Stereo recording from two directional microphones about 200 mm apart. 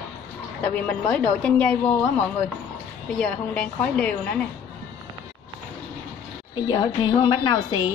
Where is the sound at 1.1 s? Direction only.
5° left (ahead or behind).